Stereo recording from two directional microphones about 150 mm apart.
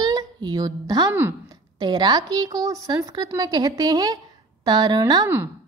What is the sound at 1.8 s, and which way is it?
A woman's voice, 30° right (ahead or behind).